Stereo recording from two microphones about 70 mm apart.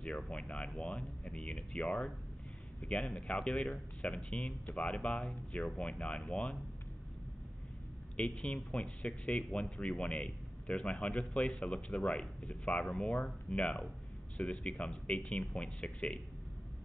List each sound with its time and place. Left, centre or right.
0.3 s a man's voice: centre
8.2 s a man's voice: centre